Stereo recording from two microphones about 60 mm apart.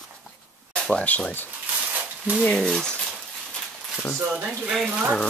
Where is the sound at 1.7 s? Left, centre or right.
Right.